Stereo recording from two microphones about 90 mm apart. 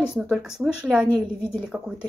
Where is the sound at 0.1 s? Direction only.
5° right (ahead or behind).